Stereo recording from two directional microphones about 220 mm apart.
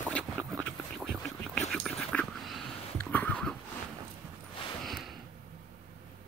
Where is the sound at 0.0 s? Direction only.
5° left (ahead or behind).